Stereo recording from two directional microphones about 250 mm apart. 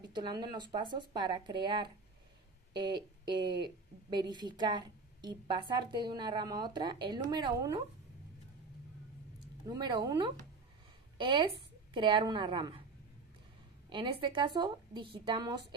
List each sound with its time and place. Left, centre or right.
0.1 s speech: centre
9.7 s a woman's voice: centre
13.8 s a woman's voice: centre